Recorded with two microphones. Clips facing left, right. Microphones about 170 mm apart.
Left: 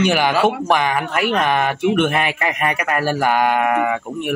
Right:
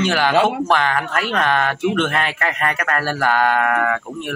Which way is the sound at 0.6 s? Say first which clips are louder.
Left 1 dB; 15° left (ahead or behind).